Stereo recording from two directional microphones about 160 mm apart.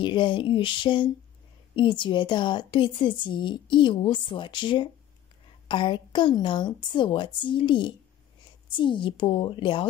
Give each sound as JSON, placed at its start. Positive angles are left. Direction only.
{"t": 0.0, "sound": "a woman's voice", "side_deg": 30}